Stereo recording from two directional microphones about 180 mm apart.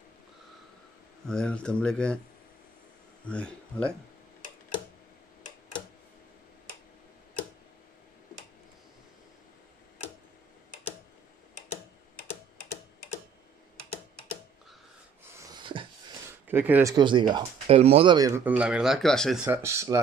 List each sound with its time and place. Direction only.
1.2 s speech: 5° left (ahead or behind)
3.3 s speech: 5° left (ahead or behind)
15.6 s wheeze: 30° right (ahead or behind)
16.4 s speech: 10° right (ahead or behind)
16.9 s speech: 25° right (ahead or behind)
18.4 s speech: 10° right (ahead or behind)
19.4 s speech: 15° right (ahead or behind)